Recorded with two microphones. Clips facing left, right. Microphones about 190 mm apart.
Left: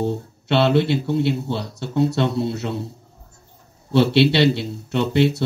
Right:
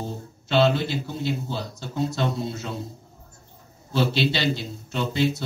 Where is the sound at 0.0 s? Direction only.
65° left (ahead or behind).